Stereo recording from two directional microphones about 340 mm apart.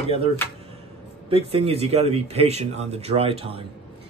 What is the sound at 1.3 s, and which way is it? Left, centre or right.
Speech, centre.